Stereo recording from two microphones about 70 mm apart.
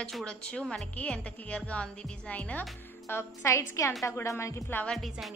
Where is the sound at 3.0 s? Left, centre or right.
Left.